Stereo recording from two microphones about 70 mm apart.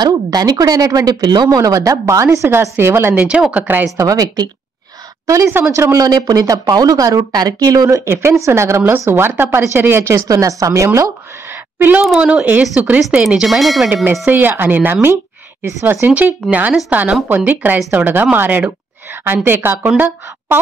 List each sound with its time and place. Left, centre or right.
0.0 s a woman's voice: right
3.3 s a woman's voice: centre
3.9 s a woman's voice: right
5.9 s a woman's voice: right
8.0 s a woman's voice: right
11.4 s a sound: right
12.2 s a woman's voice: centre
13.2 s speech: centre
14.2 s a woman's voice: right
16.1 s a woman's voice: centre